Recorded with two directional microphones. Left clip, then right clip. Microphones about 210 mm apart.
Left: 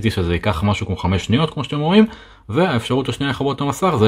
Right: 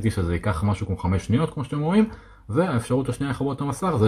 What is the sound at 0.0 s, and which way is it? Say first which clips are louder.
Speech: left 7 dB; 35° left (ahead or behind).